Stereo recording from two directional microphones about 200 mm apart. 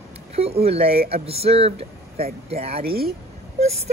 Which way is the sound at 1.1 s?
30° right (ahead or behind).